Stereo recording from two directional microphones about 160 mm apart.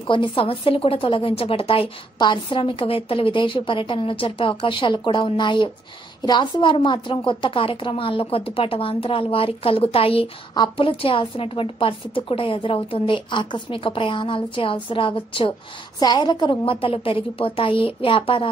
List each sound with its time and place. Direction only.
0.0 s a woman's voice: 30° left (ahead or behind)